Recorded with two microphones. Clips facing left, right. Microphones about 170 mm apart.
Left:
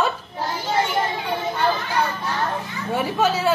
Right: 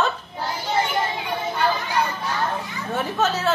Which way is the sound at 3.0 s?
10° left (ahead or behind).